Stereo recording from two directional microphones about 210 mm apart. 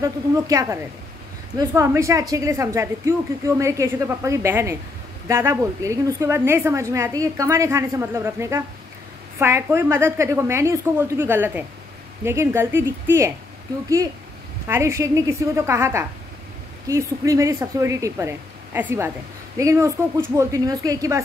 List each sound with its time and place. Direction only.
0.0 s a woman's voice: 15° right (ahead or behind)
14.7 s a woman's voice: 15° right (ahead or behind)